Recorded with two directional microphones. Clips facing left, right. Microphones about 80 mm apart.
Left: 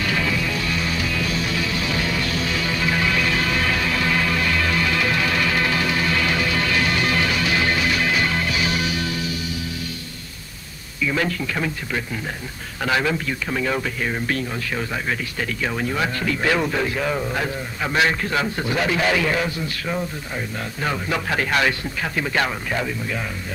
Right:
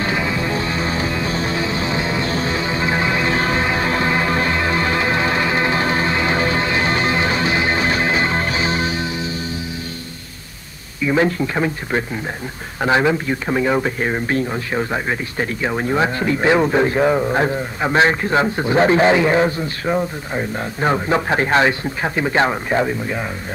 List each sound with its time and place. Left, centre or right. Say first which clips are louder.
0.0 s music: right 3 dB; right
11.0 s speech: right 6 dB; right